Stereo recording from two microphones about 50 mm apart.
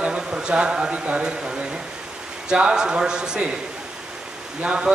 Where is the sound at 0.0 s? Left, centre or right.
Right.